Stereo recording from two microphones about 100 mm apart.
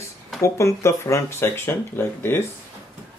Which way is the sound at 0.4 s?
30° left (ahead or behind).